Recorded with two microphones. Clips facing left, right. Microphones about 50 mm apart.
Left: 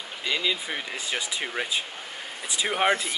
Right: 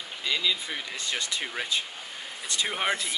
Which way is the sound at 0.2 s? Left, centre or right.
Centre.